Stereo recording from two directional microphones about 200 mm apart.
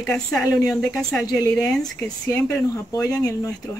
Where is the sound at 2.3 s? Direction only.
15° left (ahead or behind).